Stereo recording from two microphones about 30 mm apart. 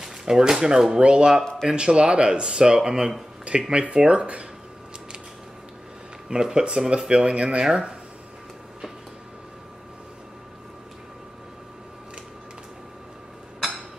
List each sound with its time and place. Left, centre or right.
0.0 s a sound: right
0.7 s speech: right
1.0 s speech: right; by 3.2 s centre
3.7 s speech: right
6.2 s speech: right
13.6 s a sound: centre